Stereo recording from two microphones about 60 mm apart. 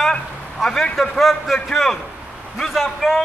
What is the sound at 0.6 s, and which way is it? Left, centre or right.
A man's voice, centre.